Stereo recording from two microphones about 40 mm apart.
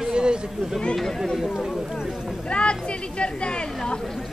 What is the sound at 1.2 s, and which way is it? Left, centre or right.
Speech, centre.